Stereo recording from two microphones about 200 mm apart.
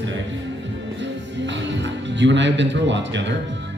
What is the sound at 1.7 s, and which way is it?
Speech, 65° right (ahead or behind).